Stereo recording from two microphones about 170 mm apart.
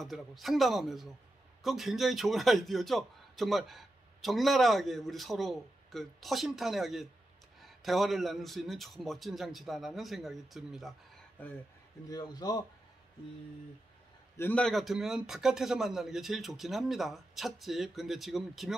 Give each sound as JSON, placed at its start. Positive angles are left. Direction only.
{"t": 0.0, "sound": "a man's voice", "side_deg": 0}
{"t": 11.4, "sound": "speech", "side_deg": 10}
{"t": 12.1, "sound": "a man's voice", "side_deg": 25}
{"t": 14.3, "sound": "a man's voice", "side_deg": 10}